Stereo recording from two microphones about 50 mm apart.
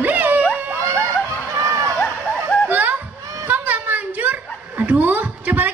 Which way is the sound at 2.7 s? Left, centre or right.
Right.